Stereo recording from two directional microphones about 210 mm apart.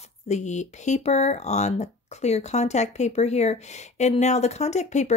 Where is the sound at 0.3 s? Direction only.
35° left (ahead or behind).